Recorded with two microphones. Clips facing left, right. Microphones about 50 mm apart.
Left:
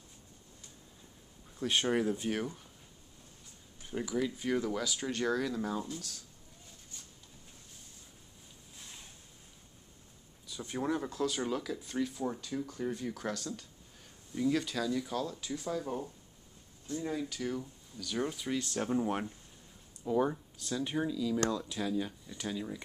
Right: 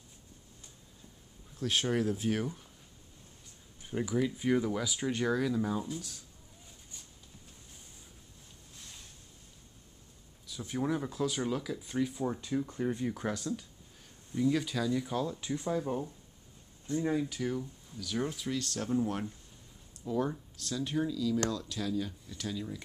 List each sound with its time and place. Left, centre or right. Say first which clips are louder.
1.6 s speech: even; centre
4.0 s speech: right 3 dB; centre
10.4 s speech: right 1 dB; centre
14.3 s speech: right 1 dB; centre; by 15.8 s right
15.8 s speech: right 3 dB; centre
16.8 s speech: right 5 dB; right
17.4 s speech: right 2 dB; centre
20.1 s speech: left 2 dB; centre